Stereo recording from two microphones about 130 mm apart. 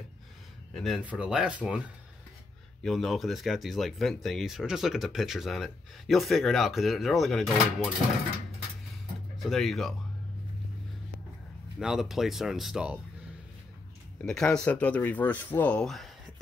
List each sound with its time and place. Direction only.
0.7 s speech: centre (ahead or behind)
2.8 s speech: centre (ahead or behind)
9.4 s speech: centre (ahead or behind)
11.8 s speech: 5° right (ahead or behind)
14.2 s speech: 5° left (ahead or behind)